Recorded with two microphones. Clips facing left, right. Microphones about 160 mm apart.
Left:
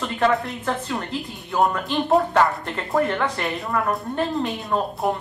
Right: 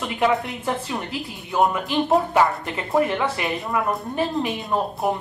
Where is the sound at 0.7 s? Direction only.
10° right (ahead or behind).